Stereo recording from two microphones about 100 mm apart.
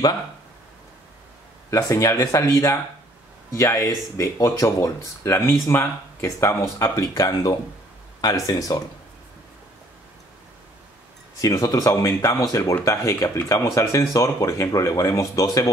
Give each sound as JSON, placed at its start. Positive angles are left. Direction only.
{"t": 1.7, "sound": "speech", "side_deg": 30}
{"t": 11.4, "sound": "speech", "side_deg": 35}